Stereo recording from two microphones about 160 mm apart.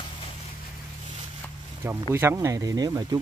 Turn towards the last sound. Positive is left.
turn(degrees=-25)  # may be behind; listen again after turning